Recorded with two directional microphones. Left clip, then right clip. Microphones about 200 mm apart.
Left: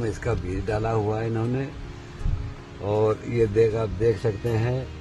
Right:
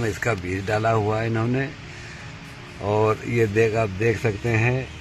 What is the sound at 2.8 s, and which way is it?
Speech, 30° right (ahead or behind).